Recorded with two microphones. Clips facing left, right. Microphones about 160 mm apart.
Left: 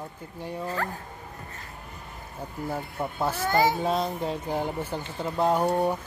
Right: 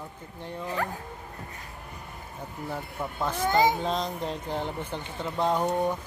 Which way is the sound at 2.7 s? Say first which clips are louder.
Left 3 dB; 10° left (ahead or behind).